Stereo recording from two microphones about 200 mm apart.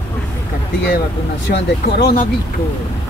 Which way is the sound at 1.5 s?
55° left (ahead or behind).